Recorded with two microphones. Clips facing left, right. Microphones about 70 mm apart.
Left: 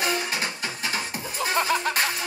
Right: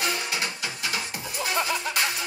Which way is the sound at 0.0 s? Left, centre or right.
Left.